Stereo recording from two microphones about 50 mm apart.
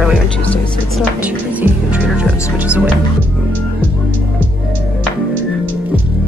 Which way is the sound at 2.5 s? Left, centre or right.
Right.